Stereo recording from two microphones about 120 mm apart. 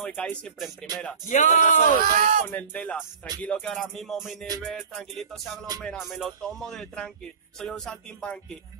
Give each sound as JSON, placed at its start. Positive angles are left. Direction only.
{"t": 0.0, "sound": "speech", "side_deg": 10}
{"t": 1.3, "sound": "speech", "side_deg": 90}
{"t": 2.1, "sound": "speech", "side_deg": -90}
{"t": 2.4, "sound": "speech", "side_deg": 15}
{"t": 3.4, "sound": "music", "side_deg": 10}